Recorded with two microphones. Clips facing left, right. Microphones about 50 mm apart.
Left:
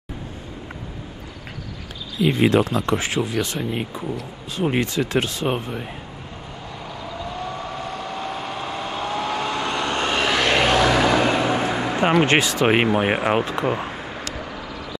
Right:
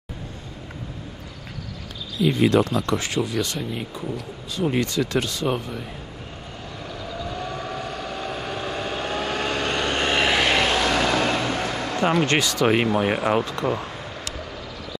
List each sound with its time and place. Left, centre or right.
2.1 s speech: left
7.2 s vehicle: centre
9.9 s vehicle: centre
10.6 s vehicle: centre